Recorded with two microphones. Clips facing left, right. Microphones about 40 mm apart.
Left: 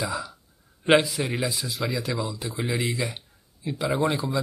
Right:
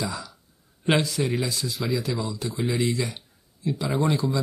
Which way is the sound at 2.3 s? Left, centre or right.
Centre.